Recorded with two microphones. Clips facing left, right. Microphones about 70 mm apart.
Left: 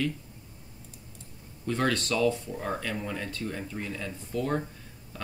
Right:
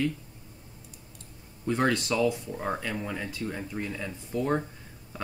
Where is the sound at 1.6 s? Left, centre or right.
Centre.